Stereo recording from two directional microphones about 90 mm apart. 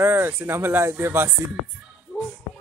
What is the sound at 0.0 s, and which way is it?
Speech, 25° right (ahead or behind).